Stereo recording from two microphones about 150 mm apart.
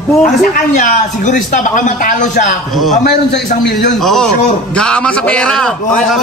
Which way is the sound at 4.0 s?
Centre (ahead or behind).